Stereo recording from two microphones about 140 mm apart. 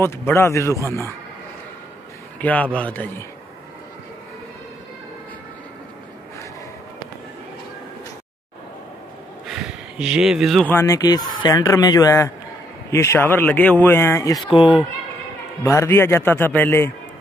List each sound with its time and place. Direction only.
0.0 s speech: 20° left (ahead or behind)
2.4 s speech: 10° left (ahead or behind)
9.5 s a sound: 5° right (ahead or behind)
10.6 s speech: 15° left (ahead or behind)
11.0 s speech: 25° left (ahead or behind)
14.5 s speech: 40° left (ahead or behind)
15.6 s speech: 20° left (ahead or behind)